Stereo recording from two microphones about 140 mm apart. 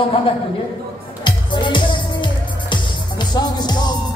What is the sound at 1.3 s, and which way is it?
Music, 35° left (ahead or behind).